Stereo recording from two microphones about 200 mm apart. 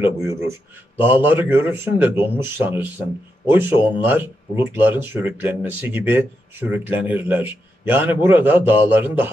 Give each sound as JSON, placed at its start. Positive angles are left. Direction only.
{"t": 0.0, "sound": "speech", "side_deg": -15}